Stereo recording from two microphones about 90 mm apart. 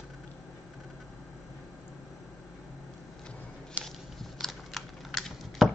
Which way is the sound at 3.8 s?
15° right (ahead or behind).